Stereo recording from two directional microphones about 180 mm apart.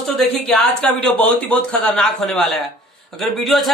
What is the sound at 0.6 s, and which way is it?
A man's voice, 5° left (ahead or behind).